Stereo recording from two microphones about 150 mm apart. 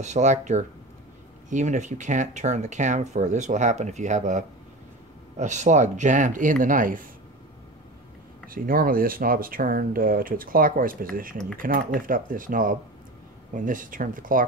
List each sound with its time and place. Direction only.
0.0 s speech: 50° right (ahead or behind)
8.5 s speech: 70° right (ahead or behind)